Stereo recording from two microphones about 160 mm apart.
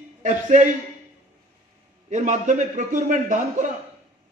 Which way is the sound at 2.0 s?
50° right (ahead or behind).